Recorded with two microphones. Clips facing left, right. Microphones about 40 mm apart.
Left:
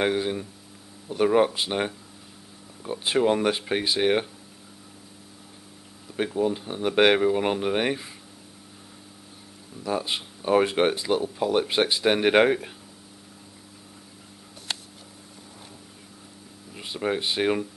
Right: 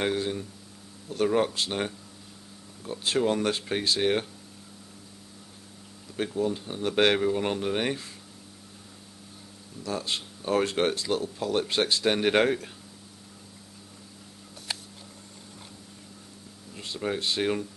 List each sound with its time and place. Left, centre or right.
0.0 s speech: centre
6.1 s speech: centre
9.8 s speech: centre
16.7 s speech: centre